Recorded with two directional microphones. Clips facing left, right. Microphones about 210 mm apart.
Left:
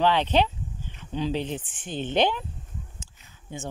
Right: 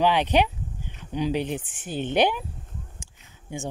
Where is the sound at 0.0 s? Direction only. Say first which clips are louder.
Right 1 dB; 10° right (ahead or behind).